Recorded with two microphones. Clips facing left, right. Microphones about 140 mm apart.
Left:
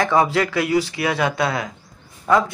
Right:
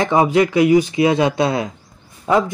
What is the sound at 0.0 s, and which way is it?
Speech, 20° right (ahead or behind).